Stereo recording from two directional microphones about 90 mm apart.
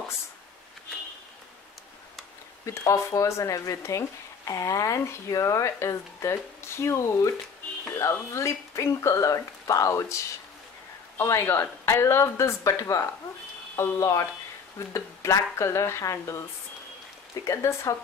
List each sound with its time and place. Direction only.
2.6 s speech: 35° left (ahead or behind)
17.5 s speech: 30° left (ahead or behind)